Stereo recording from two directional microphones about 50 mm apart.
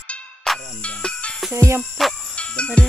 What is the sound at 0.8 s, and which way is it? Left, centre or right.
Music, left.